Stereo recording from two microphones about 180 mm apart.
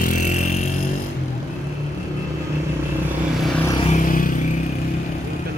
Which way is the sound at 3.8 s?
45° left (ahead or behind).